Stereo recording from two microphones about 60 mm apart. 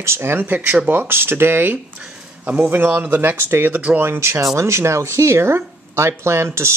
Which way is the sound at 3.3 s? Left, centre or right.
Right.